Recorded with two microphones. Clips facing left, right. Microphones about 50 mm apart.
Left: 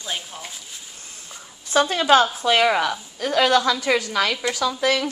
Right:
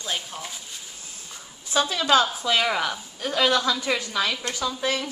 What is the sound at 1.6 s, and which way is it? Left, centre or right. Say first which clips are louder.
A woman's voice: left 5 dB; left.